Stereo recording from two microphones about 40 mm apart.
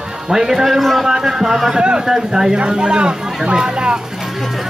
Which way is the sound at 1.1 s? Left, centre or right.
Centre.